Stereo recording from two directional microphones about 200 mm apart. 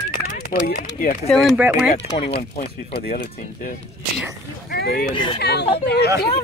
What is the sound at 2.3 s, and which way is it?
Speech, 50° left (ahead or behind).